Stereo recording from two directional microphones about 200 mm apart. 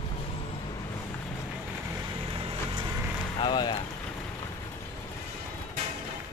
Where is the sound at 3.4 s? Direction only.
20° left (ahead or behind).